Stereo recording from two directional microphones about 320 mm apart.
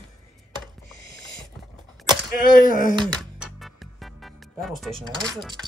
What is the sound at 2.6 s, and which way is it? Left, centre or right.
Speech, right.